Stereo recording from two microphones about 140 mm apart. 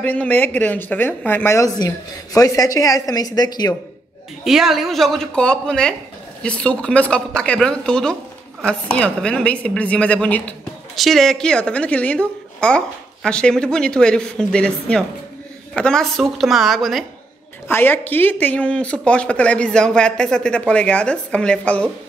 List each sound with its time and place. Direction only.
0.0 s a woman's voice: 10° left (ahead or behind); by 3.7 s 30° left (ahead or behind)
4.5 s a woman's voice: 5° right (ahead or behind)
17.6 s a woman's voice: 15° left (ahead or behind)